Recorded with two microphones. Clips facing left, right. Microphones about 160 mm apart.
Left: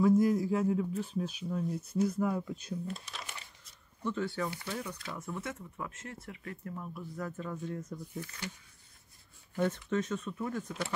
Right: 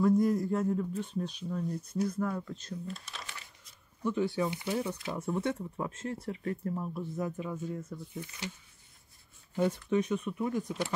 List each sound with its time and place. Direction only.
0.0 s speech: centre (ahead or behind)
2.7 s shuffling cards: centre (ahead or behind)
4.4 s speech: 20° right (ahead or behind)
7.2 s speech: 10° right (ahead or behind)
8.2 s speech: 20° right (ahead or behind)
9.6 s speech: 15° right (ahead or behind)